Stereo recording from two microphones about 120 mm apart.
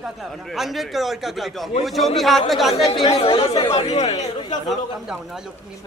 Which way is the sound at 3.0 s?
45° left (ahead or behind).